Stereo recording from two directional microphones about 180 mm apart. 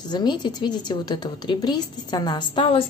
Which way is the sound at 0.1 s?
25° left (ahead or behind).